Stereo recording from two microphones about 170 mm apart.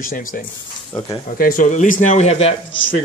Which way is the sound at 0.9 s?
25° left (ahead or behind).